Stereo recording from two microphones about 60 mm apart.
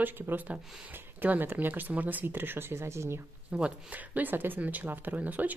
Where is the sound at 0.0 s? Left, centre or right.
Right.